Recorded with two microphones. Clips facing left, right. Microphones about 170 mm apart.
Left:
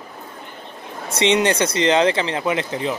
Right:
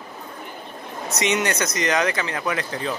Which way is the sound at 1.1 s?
30° left (ahead or behind).